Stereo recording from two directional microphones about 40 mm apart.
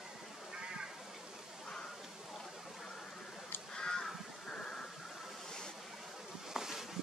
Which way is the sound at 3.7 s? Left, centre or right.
Centre.